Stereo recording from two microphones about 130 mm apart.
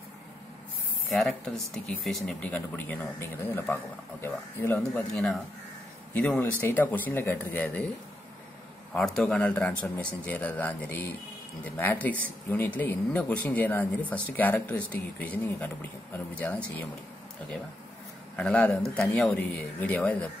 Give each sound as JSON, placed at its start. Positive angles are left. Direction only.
{"t": 1.2, "sound": "speech", "side_deg": 5}
{"t": 4.7, "sound": "speech", "side_deg": 5}
{"t": 8.9, "sound": "speech", "side_deg": 5}
{"t": 18.3, "sound": "speech", "side_deg": 10}